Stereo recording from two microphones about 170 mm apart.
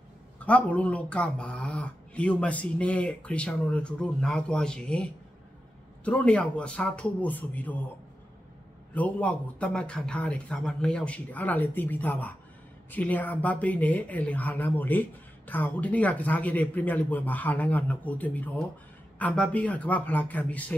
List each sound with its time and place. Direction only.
0.4 s speech: 10° left (ahead or behind)
8.9 s speech: 10° left (ahead or behind)